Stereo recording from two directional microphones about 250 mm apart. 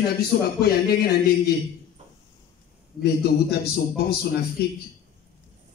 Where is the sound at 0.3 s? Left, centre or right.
Left.